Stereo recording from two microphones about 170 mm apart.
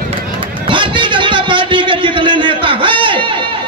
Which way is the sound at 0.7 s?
30° right (ahead or behind).